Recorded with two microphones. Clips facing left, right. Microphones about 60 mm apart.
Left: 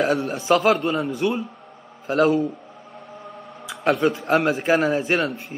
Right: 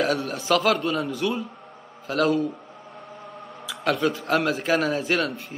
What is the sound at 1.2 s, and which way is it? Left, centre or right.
Speech, centre.